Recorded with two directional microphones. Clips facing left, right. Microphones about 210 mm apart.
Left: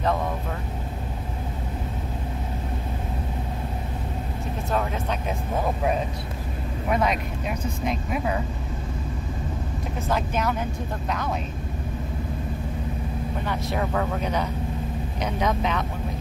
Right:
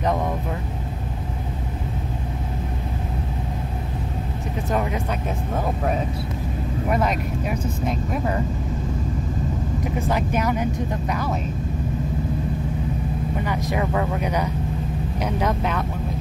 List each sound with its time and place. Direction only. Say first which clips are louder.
4.6 s speech: right 2 dB; 15° right (ahead or behind)
6.9 s speech: right 1 dB; centre (ahead or behind)
10.0 s speech: right 1 dB; 10° right (ahead or behind)
13.7 s speech: right 2 dB; 5° right (ahead or behind)